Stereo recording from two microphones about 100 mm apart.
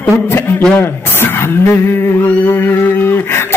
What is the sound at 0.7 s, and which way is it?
Speech, 20° left (ahead or behind).